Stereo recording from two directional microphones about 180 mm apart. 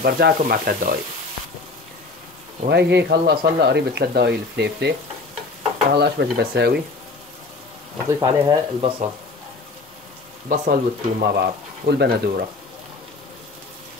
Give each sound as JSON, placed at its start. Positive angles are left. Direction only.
{"t": 0.0, "sound": "speech", "side_deg": -55}
{"t": 2.7, "sound": "speech", "side_deg": -70}
{"t": 5.9, "sound": "speech", "side_deg": -65}
{"t": 8.1, "sound": "speech", "side_deg": -25}
{"t": 10.5, "sound": "speech", "side_deg": -50}